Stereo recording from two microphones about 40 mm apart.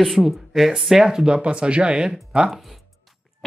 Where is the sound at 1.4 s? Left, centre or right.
Right.